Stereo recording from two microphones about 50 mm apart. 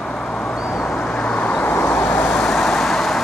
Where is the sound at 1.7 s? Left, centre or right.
Left.